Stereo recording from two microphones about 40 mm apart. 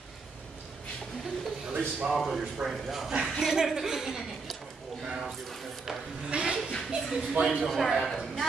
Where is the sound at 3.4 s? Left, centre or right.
Centre.